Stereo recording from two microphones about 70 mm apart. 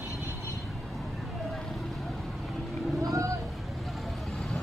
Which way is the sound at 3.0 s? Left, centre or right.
Right.